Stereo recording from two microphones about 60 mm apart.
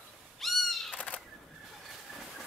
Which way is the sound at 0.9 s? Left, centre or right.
Left.